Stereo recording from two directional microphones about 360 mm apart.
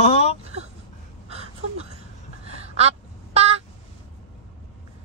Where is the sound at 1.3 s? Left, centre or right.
Centre.